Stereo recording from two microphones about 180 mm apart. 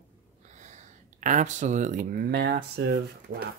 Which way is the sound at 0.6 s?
40° right (ahead or behind).